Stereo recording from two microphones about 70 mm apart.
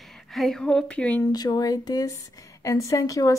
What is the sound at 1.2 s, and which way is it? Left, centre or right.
Speech, left.